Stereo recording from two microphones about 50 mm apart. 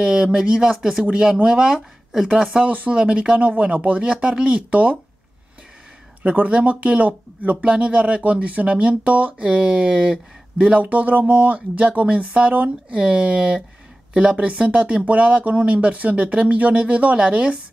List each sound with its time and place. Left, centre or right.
0.0 s speech: centre
1.0 s speech: centre
2.7 s speech: right
6.2 s speech: right